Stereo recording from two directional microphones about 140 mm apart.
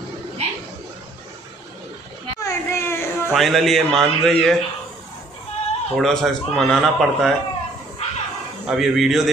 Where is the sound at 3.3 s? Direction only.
Centre (ahead or behind).